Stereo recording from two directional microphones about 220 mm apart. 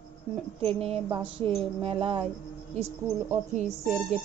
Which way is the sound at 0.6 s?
25° right (ahead or behind).